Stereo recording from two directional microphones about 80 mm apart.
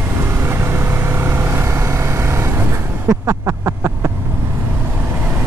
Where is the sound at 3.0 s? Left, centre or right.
Right.